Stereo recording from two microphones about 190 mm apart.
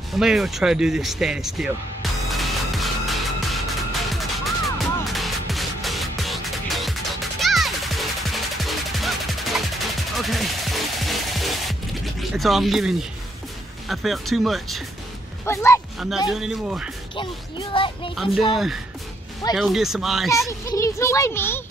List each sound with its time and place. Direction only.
0.1 s speech: centre (ahead or behind)
2.2 s music: centre (ahead or behind)
12.2 s speech: centre (ahead or behind)
15.4 s a child's voice: 15° left (ahead or behind)
16.3 s speech: 5° right (ahead or behind)
17.1 s speech: 25° left (ahead or behind)
18.1 s speech: centre (ahead or behind)
19.5 s speech: centre (ahead or behind)
20.2 s a child's voice: 15° left (ahead or behind)